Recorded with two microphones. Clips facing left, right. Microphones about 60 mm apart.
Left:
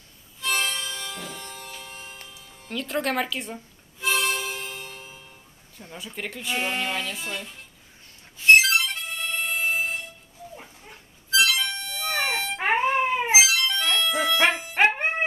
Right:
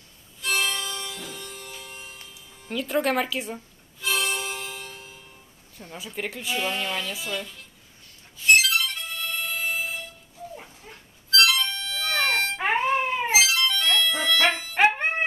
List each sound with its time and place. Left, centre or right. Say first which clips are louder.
0.4 s music: even; left
2.7 s speech: right 2 dB; centre
4.0 s music: left 2 dB; left
5.8 s speech: right 2 dB; centre
6.6 s speech: left 1 dB; left
8.4 s music: left 3 dB; left
11.7 s music: right 1 dB; left